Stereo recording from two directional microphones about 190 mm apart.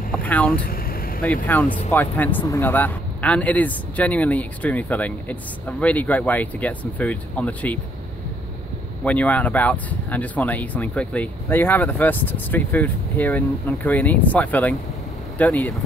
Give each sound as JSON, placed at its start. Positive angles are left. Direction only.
{"t": 0.1, "sound": "speech", "side_deg": 10}
{"t": 0.7, "sound": "vehicle", "side_deg": 50}
{"t": 1.2, "sound": "speech", "side_deg": 10}
{"t": 9.0, "sound": "speech", "side_deg": 5}